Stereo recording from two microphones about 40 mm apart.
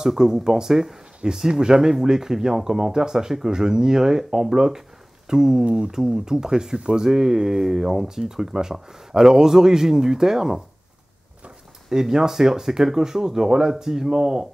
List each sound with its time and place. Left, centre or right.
0.0 s speech: centre
11.9 s speech: centre